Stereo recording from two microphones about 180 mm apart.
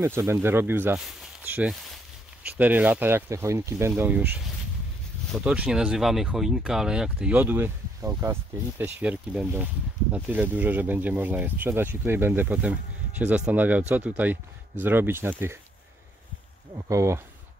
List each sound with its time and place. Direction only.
0.0 s speech: 15° right (ahead or behind)
16.7 s speech: 15° right (ahead or behind)